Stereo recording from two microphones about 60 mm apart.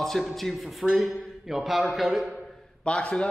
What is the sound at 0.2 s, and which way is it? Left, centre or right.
A man's voice, centre.